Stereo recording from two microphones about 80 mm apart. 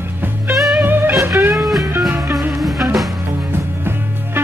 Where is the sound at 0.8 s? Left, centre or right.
Right.